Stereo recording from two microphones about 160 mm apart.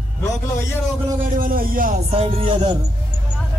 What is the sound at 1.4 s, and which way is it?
Music, 60° right (ahead or behind).